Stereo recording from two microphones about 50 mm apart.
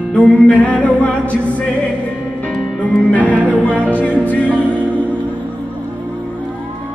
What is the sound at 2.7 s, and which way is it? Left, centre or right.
Music, left.